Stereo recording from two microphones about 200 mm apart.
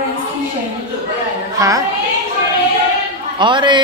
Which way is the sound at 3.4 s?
25° right (ahead or behind).